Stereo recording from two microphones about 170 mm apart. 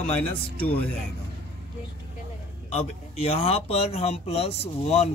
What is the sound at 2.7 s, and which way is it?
Speech, 40° left (ahead or behind).